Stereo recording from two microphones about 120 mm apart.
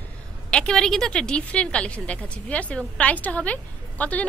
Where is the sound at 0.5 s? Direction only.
5° left (ahead or behind).